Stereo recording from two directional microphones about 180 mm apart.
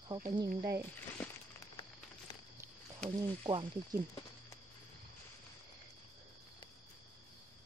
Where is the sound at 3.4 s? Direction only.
25° right (ahead or behind).